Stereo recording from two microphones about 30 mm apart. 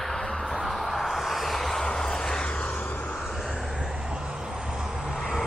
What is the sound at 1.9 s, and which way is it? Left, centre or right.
Vehicle, centre.